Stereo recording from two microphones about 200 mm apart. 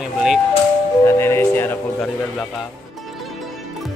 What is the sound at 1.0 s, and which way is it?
Speech, 10° left (ahead or behind).